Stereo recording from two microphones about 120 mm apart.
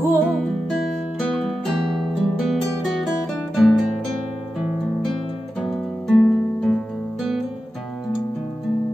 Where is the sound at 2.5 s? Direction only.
Centre (ahead or behind).